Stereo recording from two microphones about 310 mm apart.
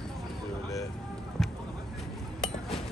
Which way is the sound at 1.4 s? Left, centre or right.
Centre.